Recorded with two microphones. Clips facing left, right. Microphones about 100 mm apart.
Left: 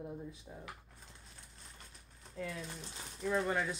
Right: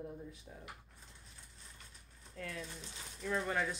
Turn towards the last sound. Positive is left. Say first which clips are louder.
# left 3 dB
turn(degrees=15)  # may be behind; listen again after turning